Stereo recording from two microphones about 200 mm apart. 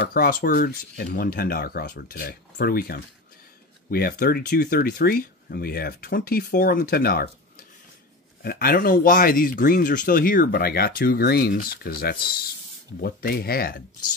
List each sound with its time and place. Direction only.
0.1 s speech: 45° left (ahead or behind)